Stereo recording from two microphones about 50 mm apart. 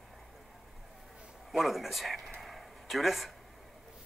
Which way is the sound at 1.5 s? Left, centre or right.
Centre.